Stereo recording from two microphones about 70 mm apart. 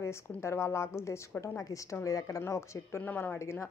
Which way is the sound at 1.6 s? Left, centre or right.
Left.